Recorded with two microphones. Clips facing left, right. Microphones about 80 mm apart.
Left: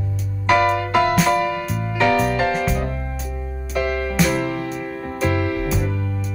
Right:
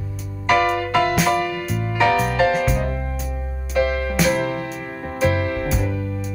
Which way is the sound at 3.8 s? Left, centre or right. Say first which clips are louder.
Even; right.